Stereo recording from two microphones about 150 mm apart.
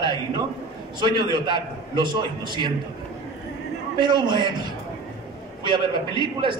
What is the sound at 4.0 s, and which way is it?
Speech, 30° right (ahead or behind).